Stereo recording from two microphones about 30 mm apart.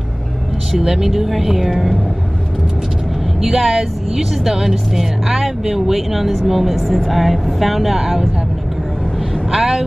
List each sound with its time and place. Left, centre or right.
0.7 s speech: centre
3.4 s speech: centre
9.5 s speech: centre